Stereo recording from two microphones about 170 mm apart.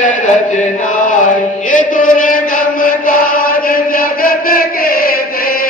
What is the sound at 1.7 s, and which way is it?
Chant, 50° left (ahead or behind).